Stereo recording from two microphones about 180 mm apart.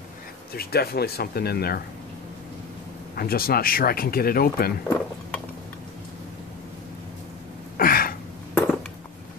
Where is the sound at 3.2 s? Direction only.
55° left (ahead or behind).